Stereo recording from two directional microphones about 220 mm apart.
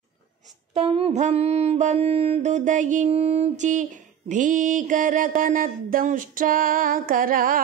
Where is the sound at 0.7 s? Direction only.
25° right (ahead or behind).